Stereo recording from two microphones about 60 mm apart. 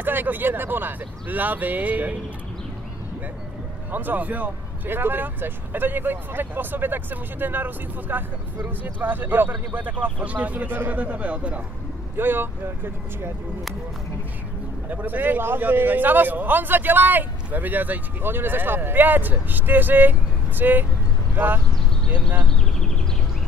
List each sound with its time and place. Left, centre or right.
0.0 s a man's voice: right
3.9 s a man's voice: right
12.2 s a man's voice: right
14.9 s a man's voice: right
22.1 s speech: right